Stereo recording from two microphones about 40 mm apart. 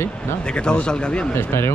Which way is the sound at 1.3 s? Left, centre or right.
Left.